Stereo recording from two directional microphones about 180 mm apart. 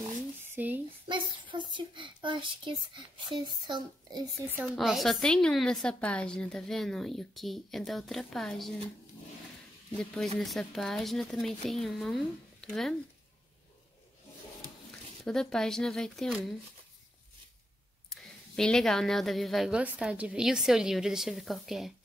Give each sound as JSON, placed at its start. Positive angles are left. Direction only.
{"t": 0.4, "sound": "a sound", "side_deg": -10}
{"t": 1.0, "sound": "speech", "side_deg": -25}
{"t": 4.7, "sound": "a woman's voice", "side_deg": 0}
{"t": 9.9, "sound": "a woman's voice", "side_deg": 0}
{"t": 15.2, "sound": "a woman's voice", "side_deg": 5}
{"t": 18.1, "sound": "a woman's voice", "side_deg": 0}